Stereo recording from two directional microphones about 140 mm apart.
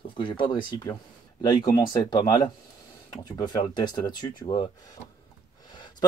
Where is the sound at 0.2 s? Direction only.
35° left (ahead or behind).